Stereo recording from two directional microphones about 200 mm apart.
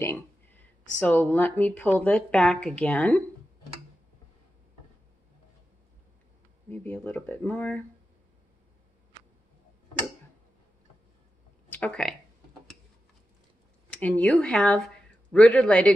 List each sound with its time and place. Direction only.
0.0 s speech: 10° left (ahead or behind)
6.7 s speech: 10° left (ahead or behind)
11.7 s speech: 5° left (ahead or behind)
14.0 s speech: 5° left (ahead or behind)